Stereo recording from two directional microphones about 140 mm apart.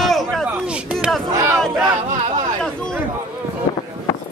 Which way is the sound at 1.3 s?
20° right (ahead or behind).